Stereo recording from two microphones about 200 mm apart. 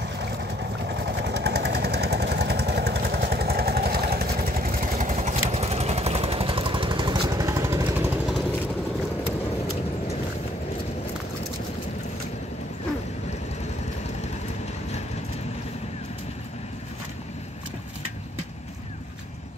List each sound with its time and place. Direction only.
0.0 s vehicle: 60° right (ahead or behind); by 8.1 s 15° right (ahead or behind)